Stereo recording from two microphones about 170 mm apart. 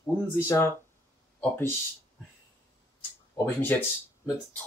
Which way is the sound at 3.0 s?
10° left (ahead or behind).